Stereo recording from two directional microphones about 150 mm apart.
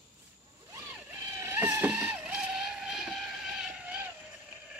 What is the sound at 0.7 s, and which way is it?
Vehicle, 20° right (ahead or behind).